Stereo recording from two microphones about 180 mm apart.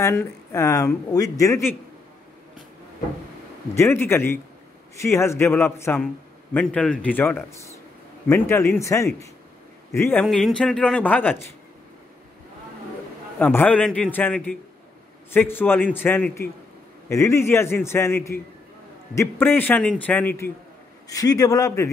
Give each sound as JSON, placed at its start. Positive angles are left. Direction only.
{"t": 0.0, "sound": "a man's voice", "side_deg": 15}
{"t": 3.7, "sound": "a man's voice", "side_deg": 15}
{"t": 10.2, "sound": "a woman's voice", "side_deg": 0}
{"t": 13.4, "sound": "a man's voice", "side_deg": 10}